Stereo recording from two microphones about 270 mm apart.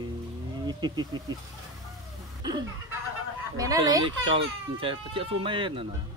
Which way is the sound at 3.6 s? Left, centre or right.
Centre.